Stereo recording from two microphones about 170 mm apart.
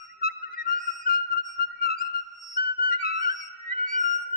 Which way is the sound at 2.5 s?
60° left (ahead or behind).